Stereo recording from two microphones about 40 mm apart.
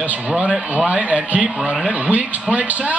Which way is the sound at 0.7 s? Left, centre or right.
Right.